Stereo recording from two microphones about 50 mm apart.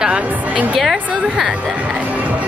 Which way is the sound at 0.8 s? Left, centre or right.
Centre.